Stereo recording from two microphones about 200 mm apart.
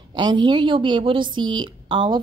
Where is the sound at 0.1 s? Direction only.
20° right (ahead or behind).